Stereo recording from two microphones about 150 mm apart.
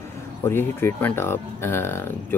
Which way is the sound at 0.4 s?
15° left (ahead or behind).